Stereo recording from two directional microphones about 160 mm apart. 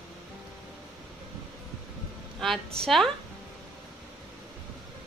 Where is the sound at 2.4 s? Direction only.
5° left (ahead or behind).